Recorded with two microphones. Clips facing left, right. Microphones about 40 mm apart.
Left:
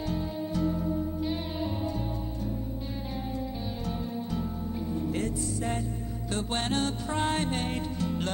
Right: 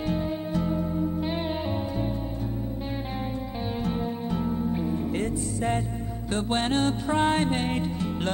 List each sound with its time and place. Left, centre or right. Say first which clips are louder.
0.1 s music: right 4 dB; right
3.8 s music: right 5 dB; right